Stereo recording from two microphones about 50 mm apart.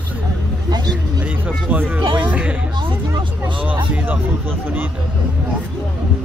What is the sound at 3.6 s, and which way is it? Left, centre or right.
Speech, right.